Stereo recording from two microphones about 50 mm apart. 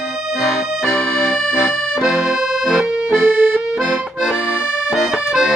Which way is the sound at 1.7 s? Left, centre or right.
Centre.